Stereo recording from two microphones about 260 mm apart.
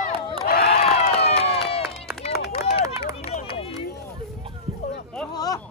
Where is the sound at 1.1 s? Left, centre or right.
Left.